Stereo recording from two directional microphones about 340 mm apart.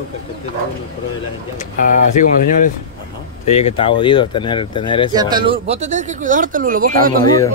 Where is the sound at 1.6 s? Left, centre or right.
Left.